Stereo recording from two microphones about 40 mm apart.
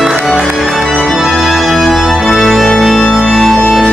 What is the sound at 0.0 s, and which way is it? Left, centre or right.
Music, centre.